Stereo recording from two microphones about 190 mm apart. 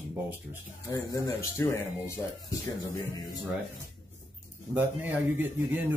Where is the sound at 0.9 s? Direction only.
15° left (ahead or behind).